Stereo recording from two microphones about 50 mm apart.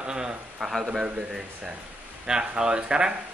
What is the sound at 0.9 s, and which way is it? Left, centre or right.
A man's voice, centre.